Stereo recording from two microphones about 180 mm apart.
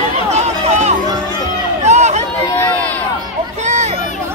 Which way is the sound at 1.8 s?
40° right (ahead or behind).